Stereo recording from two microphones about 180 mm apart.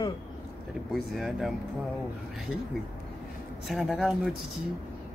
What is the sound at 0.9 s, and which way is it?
Speech, centre (ahead or behind).